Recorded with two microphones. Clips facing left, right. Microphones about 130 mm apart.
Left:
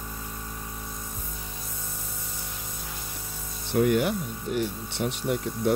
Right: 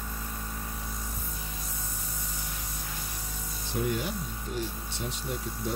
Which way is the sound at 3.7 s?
65° left (ahead or behind).